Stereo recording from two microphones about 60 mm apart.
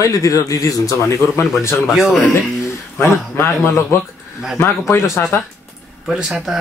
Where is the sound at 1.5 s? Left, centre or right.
Left.